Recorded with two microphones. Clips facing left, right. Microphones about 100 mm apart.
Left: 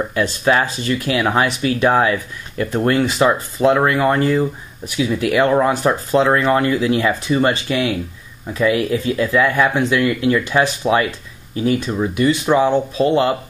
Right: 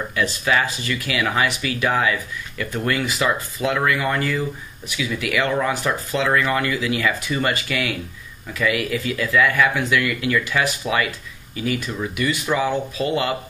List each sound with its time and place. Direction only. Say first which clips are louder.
0.1 s speech: left 3 dB; 35° left (ahead or behind)